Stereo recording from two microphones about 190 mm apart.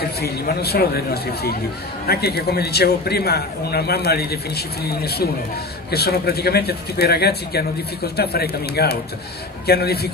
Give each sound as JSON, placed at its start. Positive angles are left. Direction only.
{"t": 0.2, "sound": "a man's voice", "side_deg": 55}